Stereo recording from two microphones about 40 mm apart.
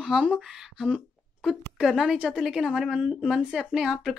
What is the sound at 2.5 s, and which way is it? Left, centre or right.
A woman's voice, centre.